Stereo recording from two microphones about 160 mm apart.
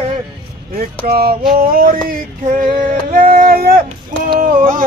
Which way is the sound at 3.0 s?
60° right (ahead or behind).